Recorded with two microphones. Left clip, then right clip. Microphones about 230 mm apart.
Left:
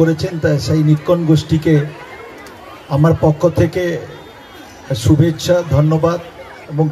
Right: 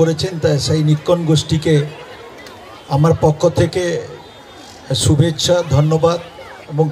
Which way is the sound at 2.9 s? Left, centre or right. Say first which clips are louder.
Even; right.